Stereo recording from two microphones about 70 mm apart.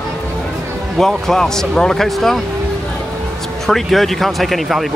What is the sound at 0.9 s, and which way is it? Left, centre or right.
Speech, centre.